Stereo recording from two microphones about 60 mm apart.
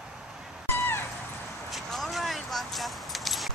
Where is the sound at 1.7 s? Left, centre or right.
Centre.